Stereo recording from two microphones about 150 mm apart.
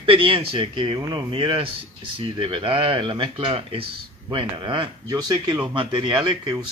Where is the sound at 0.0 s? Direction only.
35° right (ahead or behind).